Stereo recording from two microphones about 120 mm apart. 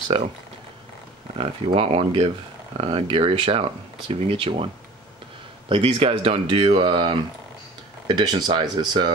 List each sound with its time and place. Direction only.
1.4 s speech: 50° right (ahead or behind)
5.7 s speech: 50° right (ahead or behind)